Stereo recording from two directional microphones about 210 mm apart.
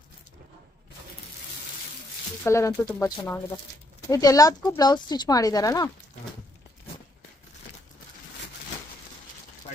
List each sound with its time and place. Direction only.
2.4 s speech: 15° left (ahead or behind)